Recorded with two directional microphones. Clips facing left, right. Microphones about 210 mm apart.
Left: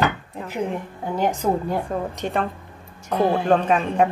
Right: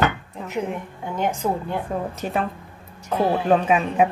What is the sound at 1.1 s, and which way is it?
Speech, 35° left (ahead or behind).